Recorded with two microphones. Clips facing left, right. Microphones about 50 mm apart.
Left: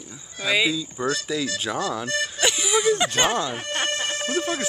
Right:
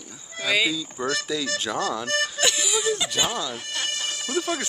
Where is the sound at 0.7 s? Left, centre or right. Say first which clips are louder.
Left 1 dB; centre; by 3.4 s left.